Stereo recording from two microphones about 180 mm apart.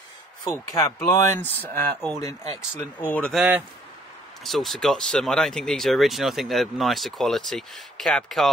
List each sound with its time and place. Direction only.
0.9 s speech: 15° left (ahead or behind)